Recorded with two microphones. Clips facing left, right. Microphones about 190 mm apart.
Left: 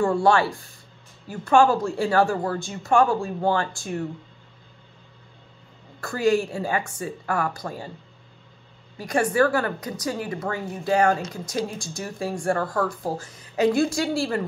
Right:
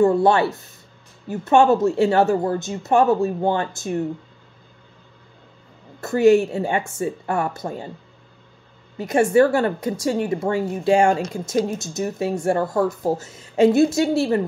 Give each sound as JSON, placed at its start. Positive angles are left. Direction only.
{"t": 0.0, "sound": "speech", "side_deg": -20}
{"t": 5.9, "sound": "speech", "side_deg": -25}
{"t": 8.9, "sound": "speech", "side_deg": -25}